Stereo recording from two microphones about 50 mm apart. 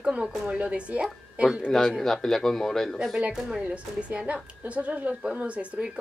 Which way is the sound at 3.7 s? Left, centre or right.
Right.